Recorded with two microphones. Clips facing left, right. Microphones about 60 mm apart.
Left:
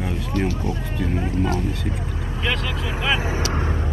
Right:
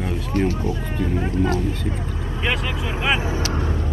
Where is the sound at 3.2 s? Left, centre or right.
Left.